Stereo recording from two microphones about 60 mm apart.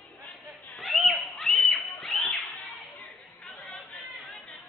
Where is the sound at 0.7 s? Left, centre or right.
Centre.